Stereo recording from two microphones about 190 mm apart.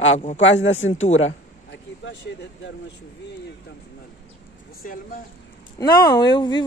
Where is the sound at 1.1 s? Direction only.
80° left.